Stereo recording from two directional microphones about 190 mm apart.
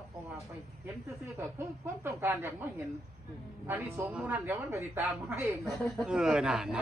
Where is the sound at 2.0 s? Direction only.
10° right (ahead or behind).